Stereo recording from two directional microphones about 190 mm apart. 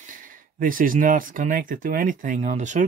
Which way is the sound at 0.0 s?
45° right (ahead or behind).